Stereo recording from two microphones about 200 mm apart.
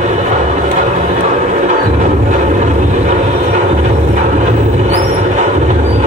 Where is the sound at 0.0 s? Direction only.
35° right (ahead or behind).